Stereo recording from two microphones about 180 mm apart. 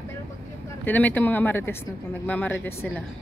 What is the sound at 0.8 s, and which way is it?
Speech, 10° left (ahead or behind).